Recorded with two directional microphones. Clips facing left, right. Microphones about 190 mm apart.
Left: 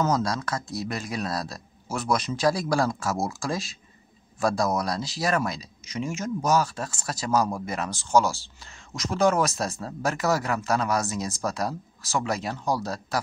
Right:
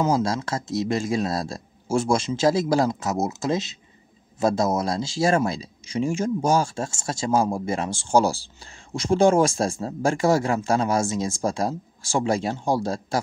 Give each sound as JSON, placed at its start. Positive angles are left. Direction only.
{"t": 0.1, "sound": "speech", "side_deg": -25}